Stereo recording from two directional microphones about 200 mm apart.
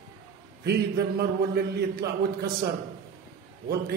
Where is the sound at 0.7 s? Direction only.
50° right (ahead or behind).